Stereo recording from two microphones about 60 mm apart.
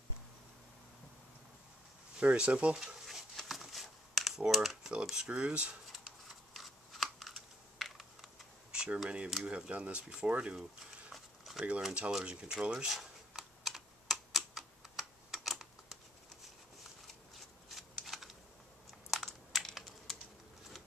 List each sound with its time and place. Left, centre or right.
2.1 s speech: centre
2.8 s a sound: centre
4.5 s speech: centre
5.3 s speech: centre
5.9 s a sound: centre
8.7 s camera: centre
9.4 s speech: right
11.1 s a sound: centre
11.9 s speech: centre
12.2 s computer keyboard: centre
17.6 s shuffling cards: centre
19.0 s crushing: centre